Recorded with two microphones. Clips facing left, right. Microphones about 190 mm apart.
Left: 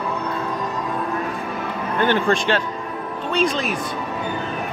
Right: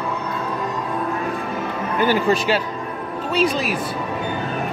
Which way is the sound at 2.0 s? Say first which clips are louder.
Right 1 dB; 5° right (ahead or behind).